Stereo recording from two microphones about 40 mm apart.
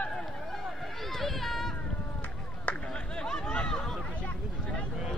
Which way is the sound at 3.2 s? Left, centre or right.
Centre.